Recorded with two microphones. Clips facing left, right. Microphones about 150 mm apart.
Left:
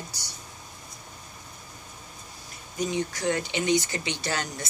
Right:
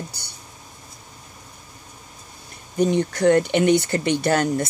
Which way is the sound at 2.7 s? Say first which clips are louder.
Right 9 dB; 60° right (ahead or behind).